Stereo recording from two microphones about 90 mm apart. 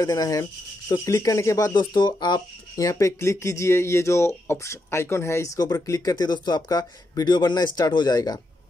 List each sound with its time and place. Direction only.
0.0 s rub: 40° left (ahead or behind)
1.7 s speech: 55° left (ahead or behind)